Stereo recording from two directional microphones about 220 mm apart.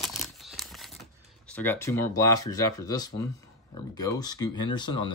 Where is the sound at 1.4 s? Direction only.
10° left (ahead or behind).